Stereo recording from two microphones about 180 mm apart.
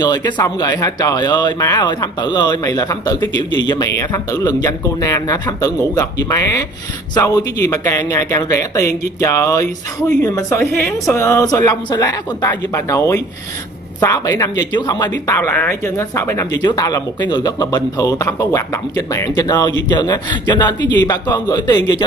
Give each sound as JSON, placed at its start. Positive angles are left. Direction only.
{"t": 0.0, "sound": "speech", "side_deg": 20}
{"t": 15.0, "sound": "speech", "side_deg": 15}